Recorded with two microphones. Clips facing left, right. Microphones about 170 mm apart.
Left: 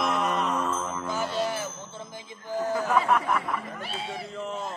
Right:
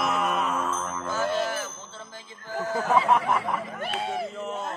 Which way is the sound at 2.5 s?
15° left (ahead or behind).